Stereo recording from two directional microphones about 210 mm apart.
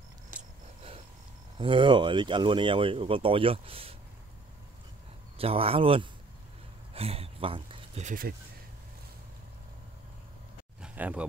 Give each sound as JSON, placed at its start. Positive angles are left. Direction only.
{"t": 1.6, "sound": "speech", "side_deg": -25}
{"t": 5.4, "sound": "speech", "side_deg": -25}
{"t": 10.8, "sound": "a sound", "side_deg": -5}